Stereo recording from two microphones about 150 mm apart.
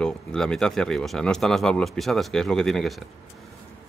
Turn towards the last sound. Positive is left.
turn(degrees=0)  # may be behind; listen again after turning